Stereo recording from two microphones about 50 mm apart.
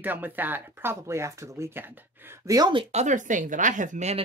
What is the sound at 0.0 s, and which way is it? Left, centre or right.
Speech, right.